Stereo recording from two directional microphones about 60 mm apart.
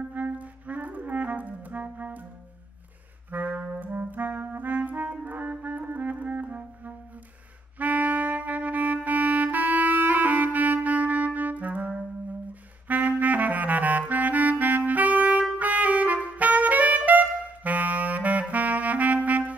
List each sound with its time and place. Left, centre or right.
0.1 s clarinet: right
3.3 s clarinet: right
7.8 s music: right
13.2 s clarinet: right
15.5 s music: right